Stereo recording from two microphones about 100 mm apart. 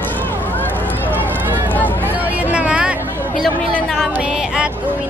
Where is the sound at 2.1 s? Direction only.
15° right (ahead or behind).